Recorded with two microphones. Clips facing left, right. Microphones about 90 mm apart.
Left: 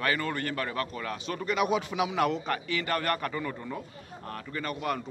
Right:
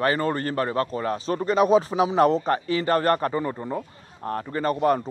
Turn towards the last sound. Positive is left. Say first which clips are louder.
# right 10 dB
turn(degrees=-35)  # may be behind; listen again after turning